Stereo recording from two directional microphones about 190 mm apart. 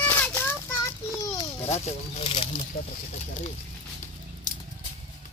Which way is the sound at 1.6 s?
30° left (ahead or behind).